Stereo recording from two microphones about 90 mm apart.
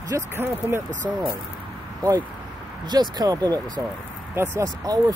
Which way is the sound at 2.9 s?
50° right (ahead or behind).